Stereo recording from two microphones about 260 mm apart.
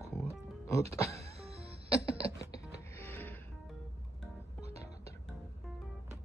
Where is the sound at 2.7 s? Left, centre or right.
Centre.